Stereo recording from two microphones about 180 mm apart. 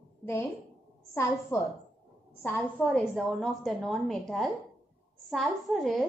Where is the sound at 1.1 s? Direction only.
15° left (ahead or behind).